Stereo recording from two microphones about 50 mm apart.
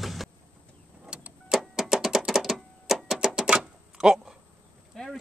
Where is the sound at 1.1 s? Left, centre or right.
Centre.